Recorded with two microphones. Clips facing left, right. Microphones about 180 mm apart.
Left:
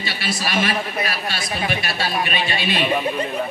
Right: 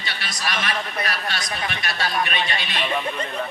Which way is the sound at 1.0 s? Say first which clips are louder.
Left 2 dB; 5° left (ahead or behind).